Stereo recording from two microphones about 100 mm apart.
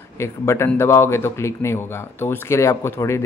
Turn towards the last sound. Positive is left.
turn(degrees=30)  # may be behind; listen again after turning